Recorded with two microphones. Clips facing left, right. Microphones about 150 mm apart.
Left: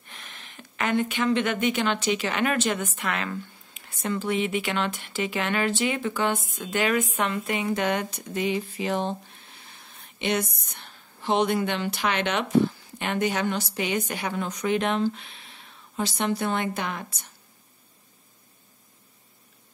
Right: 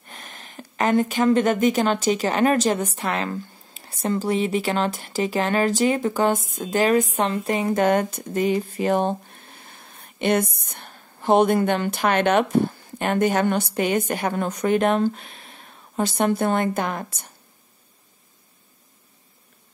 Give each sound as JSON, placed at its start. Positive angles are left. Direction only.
{"t": 0.0, "sound": "speech", "side_deg": -45}